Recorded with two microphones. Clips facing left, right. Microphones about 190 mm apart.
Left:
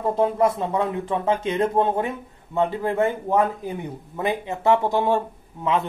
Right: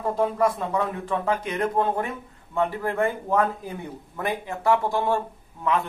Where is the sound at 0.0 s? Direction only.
25° left (ahead or behind).